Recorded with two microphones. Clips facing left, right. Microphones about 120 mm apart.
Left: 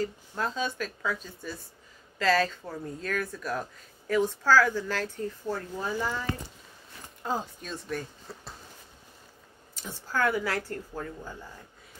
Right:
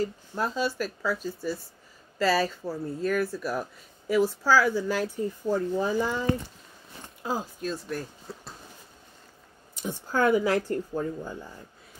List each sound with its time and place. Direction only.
0.0 s speech: 10° right (ahead or behind)
7.2 s speech: 5° right (ahead or behind)
9.8 s speech: 15° right (ahead or behind)